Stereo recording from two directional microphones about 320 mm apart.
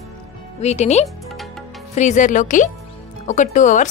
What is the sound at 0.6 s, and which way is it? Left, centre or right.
Speech, left.